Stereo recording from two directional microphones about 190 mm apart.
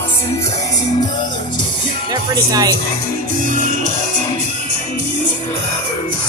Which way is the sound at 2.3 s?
20° right (ahead or behind).